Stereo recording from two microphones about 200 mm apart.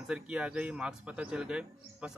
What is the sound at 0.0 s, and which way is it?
A man's voice, 5° right (ahead or behind).